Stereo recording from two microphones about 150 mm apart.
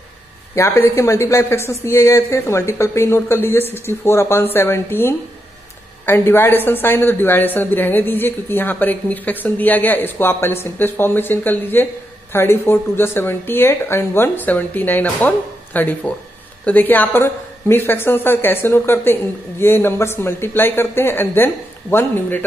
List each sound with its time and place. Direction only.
0.6 s a woman's voice: 20° left (ahead or behind)